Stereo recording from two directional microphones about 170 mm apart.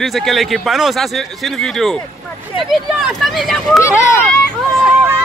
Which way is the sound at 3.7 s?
15° left (ahead or behind).